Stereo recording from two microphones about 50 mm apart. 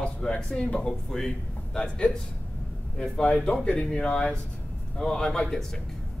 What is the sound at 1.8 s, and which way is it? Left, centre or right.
Speech, left.